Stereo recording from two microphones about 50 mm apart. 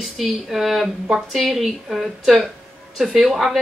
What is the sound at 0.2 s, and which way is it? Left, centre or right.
Speech, centre.